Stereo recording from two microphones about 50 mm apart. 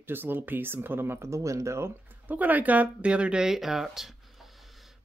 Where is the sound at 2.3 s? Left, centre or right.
Right; by 3.8 s centre.